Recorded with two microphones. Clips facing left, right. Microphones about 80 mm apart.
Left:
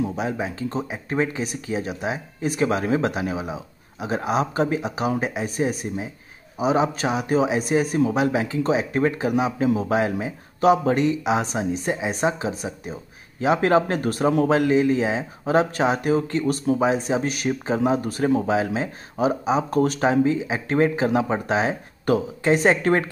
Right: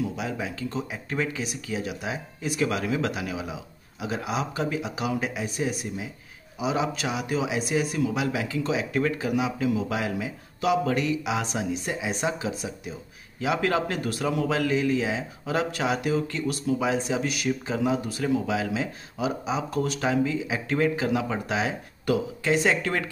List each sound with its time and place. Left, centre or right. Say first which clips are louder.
0.0 s a man's voice: left 5 dB; left